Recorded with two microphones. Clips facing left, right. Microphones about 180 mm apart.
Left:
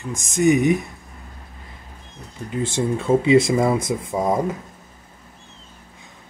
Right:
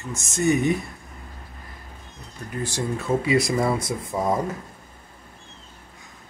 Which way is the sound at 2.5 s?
20° left (ahead or behind).